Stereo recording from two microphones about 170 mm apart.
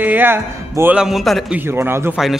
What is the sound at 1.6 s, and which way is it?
Speech, 15° right (ahead or behind).